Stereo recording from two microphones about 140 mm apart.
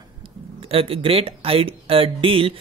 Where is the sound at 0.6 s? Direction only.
45° right (ahead or behind).